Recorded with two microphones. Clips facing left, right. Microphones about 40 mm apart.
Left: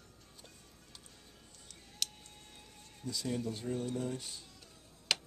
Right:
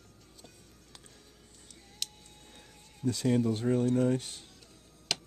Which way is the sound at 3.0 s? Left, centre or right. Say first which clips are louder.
Right 10 dB; right.